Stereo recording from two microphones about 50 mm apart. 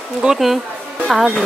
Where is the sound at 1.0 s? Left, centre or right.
Centre.